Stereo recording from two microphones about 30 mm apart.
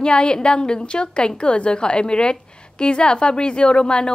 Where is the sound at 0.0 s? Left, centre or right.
Left.